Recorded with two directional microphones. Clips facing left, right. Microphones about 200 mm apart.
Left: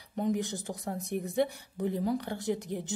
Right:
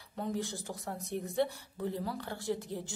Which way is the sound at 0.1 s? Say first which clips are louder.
Left 5 dB; 20° left (ahead or behind).